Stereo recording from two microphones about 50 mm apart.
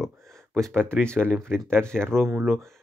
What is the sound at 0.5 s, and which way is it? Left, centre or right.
Speech, centre.